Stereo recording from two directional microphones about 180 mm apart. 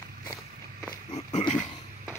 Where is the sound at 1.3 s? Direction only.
40° left (ahead or behind).